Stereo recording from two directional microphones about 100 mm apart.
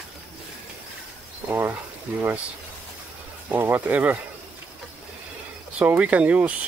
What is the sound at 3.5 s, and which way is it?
Speech, 20° right (ahead or behind).